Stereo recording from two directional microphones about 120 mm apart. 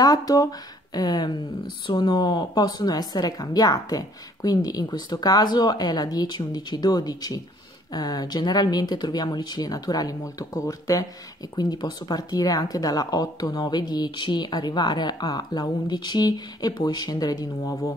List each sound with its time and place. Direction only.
0.0 s speech: 30° left (ahead or behind)